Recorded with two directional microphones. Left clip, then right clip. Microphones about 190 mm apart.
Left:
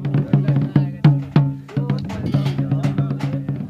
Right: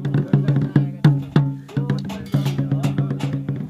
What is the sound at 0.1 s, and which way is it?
Music, 15° left (ahead or behind).